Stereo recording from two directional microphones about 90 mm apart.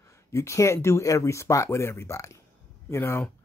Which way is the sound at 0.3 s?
35° left (ahead or behind).